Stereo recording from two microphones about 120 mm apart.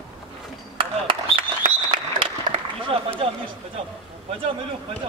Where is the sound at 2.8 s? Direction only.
50° right (ahead or behind).